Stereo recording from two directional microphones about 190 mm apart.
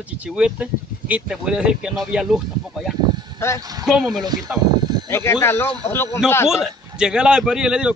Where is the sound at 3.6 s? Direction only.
20° right (ahead or behind).